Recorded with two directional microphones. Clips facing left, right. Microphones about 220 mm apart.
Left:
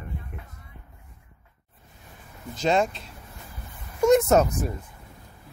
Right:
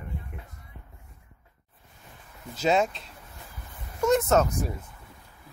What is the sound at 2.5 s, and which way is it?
Speech, 5° right (ahead or behind).